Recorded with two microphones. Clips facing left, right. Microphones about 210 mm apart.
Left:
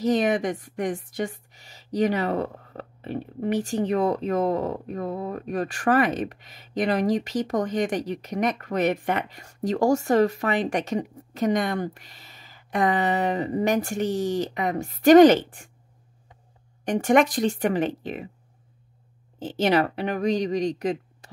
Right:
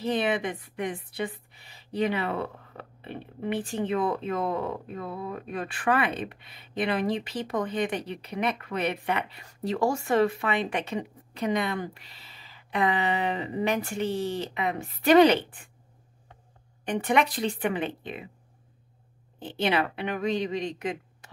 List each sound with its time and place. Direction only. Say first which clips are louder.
0.0 s a woman's voice: left 5 dB; 45° left (ahead or behind)
16.8 s a woman's voice: left 5 dB; 45° left (ahead or behind)
19.4 s a woman's voice: left 5 dB; 45° left (ahead or behind)